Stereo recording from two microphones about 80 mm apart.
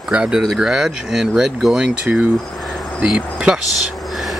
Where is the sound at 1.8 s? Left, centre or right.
Right.